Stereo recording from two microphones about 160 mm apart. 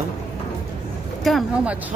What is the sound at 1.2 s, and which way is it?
Speech, 5° right (ahead or behind).